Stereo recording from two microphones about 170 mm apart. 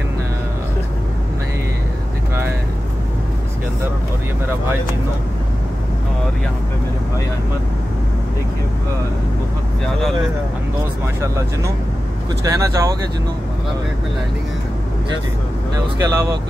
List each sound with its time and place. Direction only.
11.1 s speech: 20° right (ahead or behind)
16.0 s speech: 20° right (ahead or behind)